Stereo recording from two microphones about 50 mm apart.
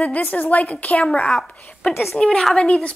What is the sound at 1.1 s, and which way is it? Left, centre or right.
Speech, centre.